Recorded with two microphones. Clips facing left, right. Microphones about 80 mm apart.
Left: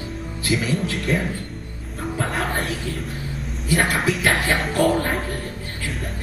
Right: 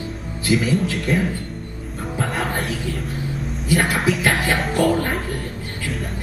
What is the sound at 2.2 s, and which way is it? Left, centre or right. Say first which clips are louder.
Music: right 1 dB; centre.